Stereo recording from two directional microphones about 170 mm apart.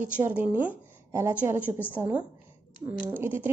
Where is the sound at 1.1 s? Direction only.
15° right (ahead or behind).